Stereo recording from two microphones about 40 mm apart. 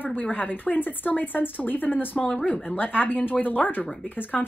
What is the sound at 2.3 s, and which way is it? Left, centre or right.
Speech, left.